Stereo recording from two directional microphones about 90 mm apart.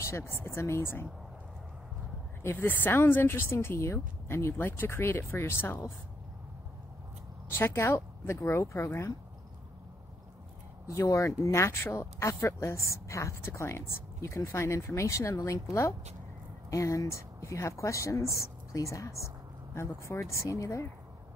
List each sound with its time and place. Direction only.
0.0 s speech: 30° left (ahead or behind)
2.4 s speech: 20° left (ahead or behind)
7.4 s speech: 25° left (ahead or behind)
10.9 s speech: 35° left (ahead or behind)